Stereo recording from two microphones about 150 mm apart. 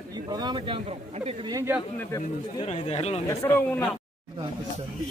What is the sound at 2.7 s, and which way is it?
Speech, 45° left (ahead or behind).